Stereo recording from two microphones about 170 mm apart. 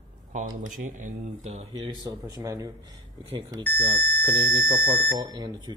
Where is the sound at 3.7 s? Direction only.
10° left (ahead or behind).